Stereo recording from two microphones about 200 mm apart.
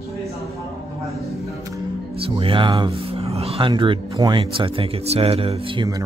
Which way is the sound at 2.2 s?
30° right (ahead or behind).